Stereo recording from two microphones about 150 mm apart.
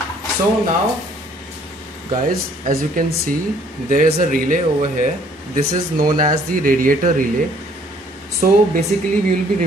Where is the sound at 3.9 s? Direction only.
65° right (ahead or behind).